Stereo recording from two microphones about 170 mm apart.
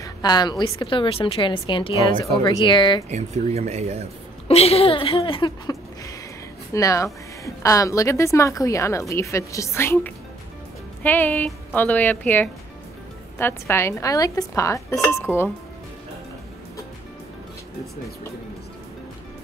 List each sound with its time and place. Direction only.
0.0 s a woman's voice: 25° left (ahead or behind)
3.1 s speech: 40° right (ahead or behind)
4.5 s a woman's voice: 35° left (ahead or behind); by 15.2 s 15° left (ahead or behind)